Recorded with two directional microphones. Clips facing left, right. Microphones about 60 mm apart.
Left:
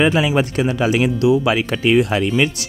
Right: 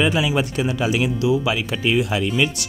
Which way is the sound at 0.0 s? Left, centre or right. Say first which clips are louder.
Left 4 dB; left.